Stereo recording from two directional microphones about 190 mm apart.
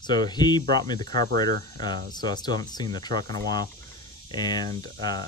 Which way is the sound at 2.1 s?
20° left (ahead or behind).